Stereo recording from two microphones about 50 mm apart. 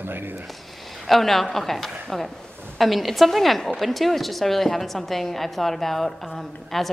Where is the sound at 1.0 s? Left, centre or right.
Centre.